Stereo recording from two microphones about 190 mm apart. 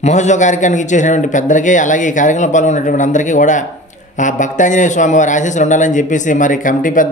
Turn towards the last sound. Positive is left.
turn(degrees=45)  # may be behind; listen again after turning